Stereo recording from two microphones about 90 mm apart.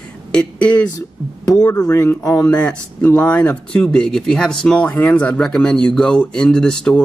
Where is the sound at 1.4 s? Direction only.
45° left (ahead or behind).